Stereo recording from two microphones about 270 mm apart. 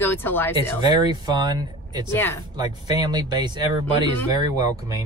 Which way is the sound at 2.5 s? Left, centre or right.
Centre.